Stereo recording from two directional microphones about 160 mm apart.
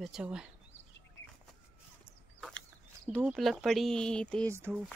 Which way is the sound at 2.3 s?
5° left (ahead or behind).